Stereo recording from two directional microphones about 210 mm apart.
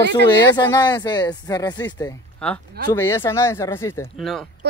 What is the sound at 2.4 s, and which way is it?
A man's voice, 5° left (ahead or behind).